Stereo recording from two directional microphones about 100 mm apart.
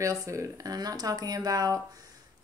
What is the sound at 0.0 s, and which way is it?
Speech, 35° right (ahead or behind).